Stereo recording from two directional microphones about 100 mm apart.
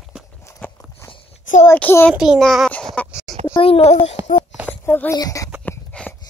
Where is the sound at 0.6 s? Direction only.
15° left (ahead or behind).